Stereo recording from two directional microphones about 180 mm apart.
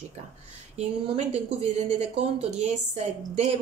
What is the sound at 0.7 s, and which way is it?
A woman's voice, 40° right (ahead or behind).